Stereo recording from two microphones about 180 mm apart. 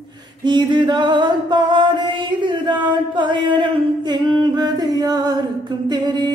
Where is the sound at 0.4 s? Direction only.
25° right (ahead or behind).